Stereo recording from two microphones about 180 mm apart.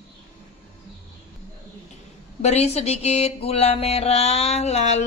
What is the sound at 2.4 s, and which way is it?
Music, 35° left (ahead or behind).